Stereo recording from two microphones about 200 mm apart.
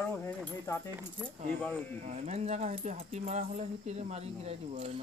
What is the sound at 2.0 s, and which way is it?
Speech, 35° right (ahead or behind).